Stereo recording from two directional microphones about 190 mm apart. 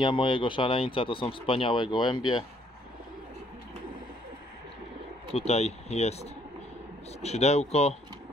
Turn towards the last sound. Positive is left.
turn(degrees=35)  # may be behind; listen again after turning